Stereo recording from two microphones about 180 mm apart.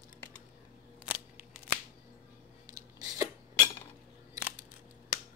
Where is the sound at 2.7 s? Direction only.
20° right (ahead or behind).